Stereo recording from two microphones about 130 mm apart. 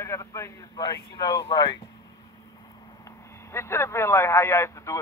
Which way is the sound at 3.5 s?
20° left (ahead or behind).